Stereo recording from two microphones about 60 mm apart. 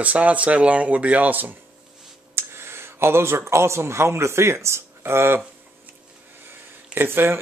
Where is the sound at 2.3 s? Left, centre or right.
Right.